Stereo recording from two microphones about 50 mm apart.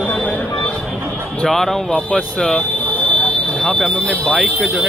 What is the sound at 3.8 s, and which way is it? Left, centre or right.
Speech, left.